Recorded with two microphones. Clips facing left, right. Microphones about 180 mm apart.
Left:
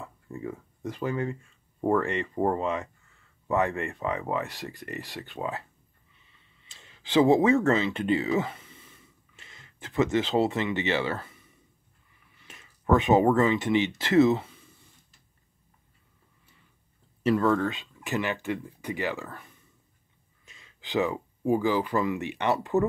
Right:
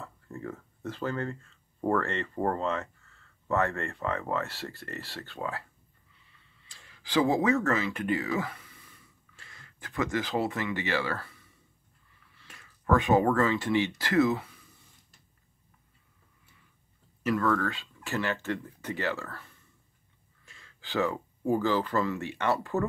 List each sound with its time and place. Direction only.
0.0 s speech: 15° left (ahead or behind)
6.3 s a sound: 20° left (ahead or behind)
12.2 s speech: 20° left (ahead or behind)
17.2 s speech: 25° left (ahead or behind)